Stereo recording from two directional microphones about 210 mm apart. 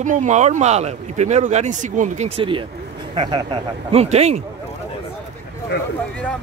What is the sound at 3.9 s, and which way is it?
Speech, 30° right (ahead or behind).